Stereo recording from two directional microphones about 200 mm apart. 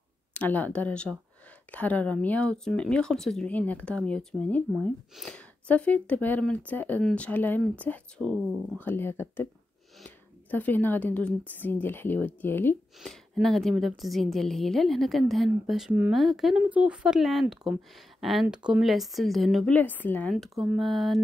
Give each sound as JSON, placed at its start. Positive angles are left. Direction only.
{"t": 0.3, "sound": "a woman's voice", "side_deg": 10}